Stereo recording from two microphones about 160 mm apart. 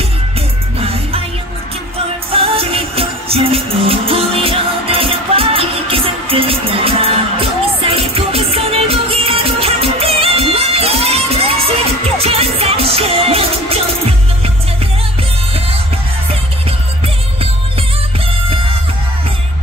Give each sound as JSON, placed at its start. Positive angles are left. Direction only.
{"t": 0.7, "sound": "music", "side_deg": -35}
{"t": 2.3, "sound": "music", "side_deg": -35}